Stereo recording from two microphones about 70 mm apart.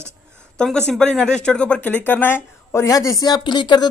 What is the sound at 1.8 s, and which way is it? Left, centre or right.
Speech, left.